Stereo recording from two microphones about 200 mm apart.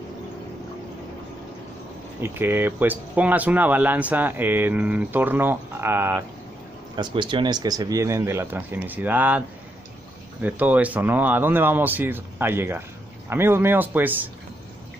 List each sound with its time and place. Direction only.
2.2 s speech: 10° right (ahead or behind)
7.0 s speech: 25° right (ahead or behind)
10.4 s speech: 10° right (ahead or behind)